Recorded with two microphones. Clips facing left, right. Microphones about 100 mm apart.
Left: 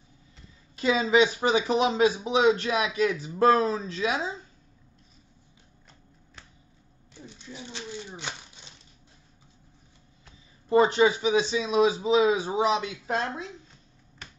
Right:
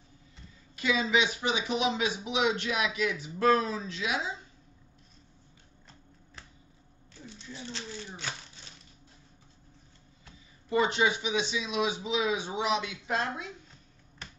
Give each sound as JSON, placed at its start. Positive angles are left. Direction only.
{"t": 0.7, "sound": "speech", "side_deg": 35}
{"t": 7.5, "sound": "speech", "side_deg": 15}
{"t": 10.7, "sound": "speech", "side_deg": 40}